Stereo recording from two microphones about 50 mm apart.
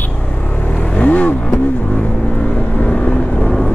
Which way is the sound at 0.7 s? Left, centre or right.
Left.